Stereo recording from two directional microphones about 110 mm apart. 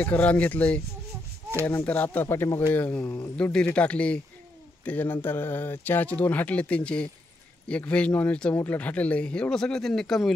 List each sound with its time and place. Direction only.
0.0 s speech: 15° left (ahead or behind)
2.7 s speech: 15° left (ahead or behind)